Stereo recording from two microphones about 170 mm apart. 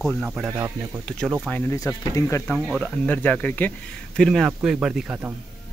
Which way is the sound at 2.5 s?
5° right (ahead or behind).